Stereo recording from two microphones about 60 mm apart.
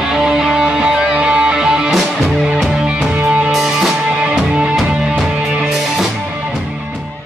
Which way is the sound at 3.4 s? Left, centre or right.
Centre.